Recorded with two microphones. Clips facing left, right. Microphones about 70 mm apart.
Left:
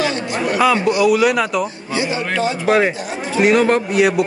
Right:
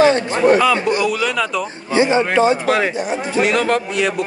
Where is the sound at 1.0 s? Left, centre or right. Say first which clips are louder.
Left 5 dB; centre.